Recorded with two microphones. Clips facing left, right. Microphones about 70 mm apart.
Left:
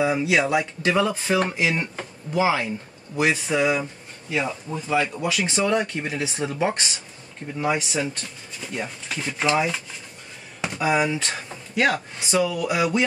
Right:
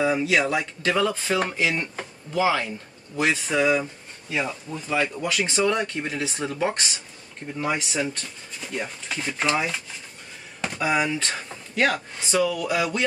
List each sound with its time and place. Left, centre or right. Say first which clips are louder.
0.0 s speech: left 1 dB; centre
4.6 s speech: left 3 dB; left
4.9 s speech: left 1 dB; centre
10.8 s speech: left 2 dB; centre